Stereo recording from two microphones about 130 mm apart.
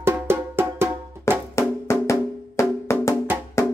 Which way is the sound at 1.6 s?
20° left (ahead or behind).